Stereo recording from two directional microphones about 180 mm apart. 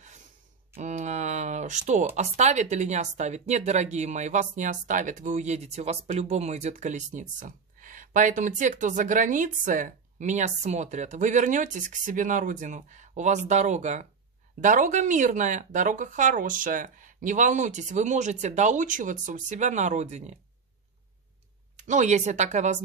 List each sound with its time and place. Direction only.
0.7 s speech: 40° right (ahead or behind)
21.7 s speech: 40° right (ahead or behind)